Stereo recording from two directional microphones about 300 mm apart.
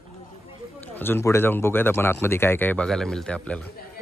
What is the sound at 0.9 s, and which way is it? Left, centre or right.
Speech, centre.